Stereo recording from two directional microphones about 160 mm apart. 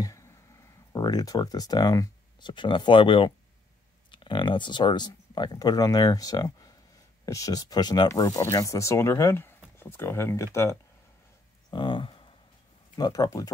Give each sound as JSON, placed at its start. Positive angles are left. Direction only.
{"t": 0.0, "sound": "a sound", "side_deg": 20}
{"t": 0.9, "sound": "speech", "side_deg": 25}
{"t": 11.7, "sound": "speech", "side_deg": 30}